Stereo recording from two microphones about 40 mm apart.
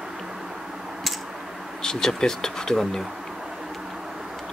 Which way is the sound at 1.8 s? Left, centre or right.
Centre.